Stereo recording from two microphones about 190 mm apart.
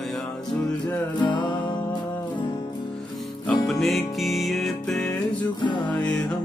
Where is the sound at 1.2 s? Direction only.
25° left (ahead or behind).